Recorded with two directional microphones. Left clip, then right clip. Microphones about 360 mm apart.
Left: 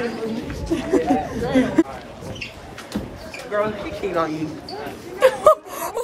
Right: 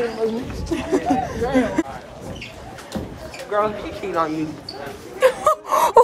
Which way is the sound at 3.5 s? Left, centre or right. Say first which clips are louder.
Right 2 dB; centre.